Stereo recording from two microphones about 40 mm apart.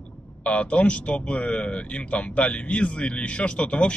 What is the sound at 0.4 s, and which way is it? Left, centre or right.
Speech, left.